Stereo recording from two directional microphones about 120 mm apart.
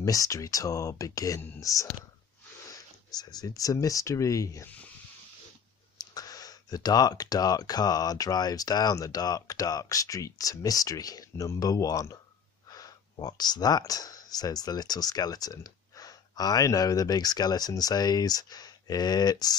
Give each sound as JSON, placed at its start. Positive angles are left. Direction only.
{"t": 0.0, "sound": "speech", "side_deg": 30}
{"t": 5.9, "sound": "speech", "side_deg": 30}